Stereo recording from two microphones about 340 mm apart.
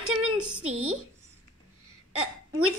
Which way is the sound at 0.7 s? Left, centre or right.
Right.